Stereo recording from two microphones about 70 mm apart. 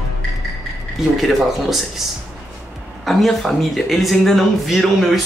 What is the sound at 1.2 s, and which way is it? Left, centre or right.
Speech, centre.